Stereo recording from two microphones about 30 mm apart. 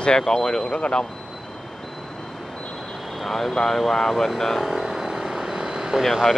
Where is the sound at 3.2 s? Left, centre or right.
Centre.